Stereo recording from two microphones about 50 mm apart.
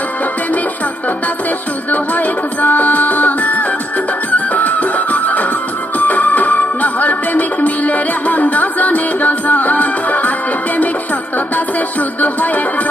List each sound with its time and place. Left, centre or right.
1.9 s music: left
12.2 s music: left